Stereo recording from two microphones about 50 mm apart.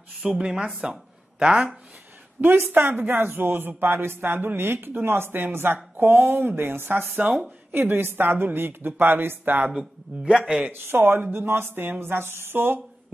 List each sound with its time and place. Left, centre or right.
0.3 s a man's voice: centre
2.5 s a man's voice: right
10.2 s a man's voice: centre
10.7 s a man's voice: right
11.3 s a man's voice: right